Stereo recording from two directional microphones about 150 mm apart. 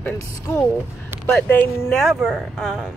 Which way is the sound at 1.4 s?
10° left (ahead or behind).